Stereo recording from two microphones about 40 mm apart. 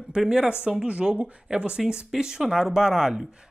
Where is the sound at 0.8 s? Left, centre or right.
Right.